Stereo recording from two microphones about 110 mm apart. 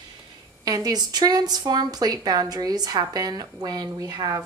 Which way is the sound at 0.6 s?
35° right (ahead or behind).